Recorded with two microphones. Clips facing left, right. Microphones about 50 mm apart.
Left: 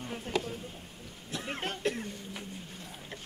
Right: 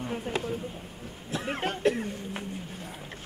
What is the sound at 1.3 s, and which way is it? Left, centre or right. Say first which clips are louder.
Speech: right 5 dB; centre.